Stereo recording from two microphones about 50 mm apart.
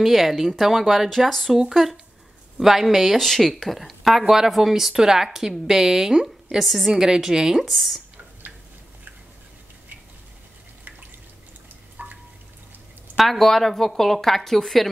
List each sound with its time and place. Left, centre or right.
0.0 s speech: centre
6.9 s a woman's voice: centre
12.0 s drip: right
13.2 s speech: centre